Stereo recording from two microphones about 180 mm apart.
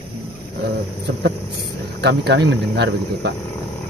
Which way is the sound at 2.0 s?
70° right (ahead or behind).